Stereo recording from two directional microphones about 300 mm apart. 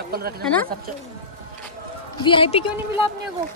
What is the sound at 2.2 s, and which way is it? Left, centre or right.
Speech, centre.